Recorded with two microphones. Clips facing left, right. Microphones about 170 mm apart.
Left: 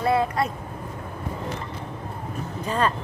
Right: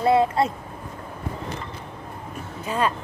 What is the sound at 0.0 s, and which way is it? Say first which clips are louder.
Speech: right 3 dB; 25° right (ahead or behind).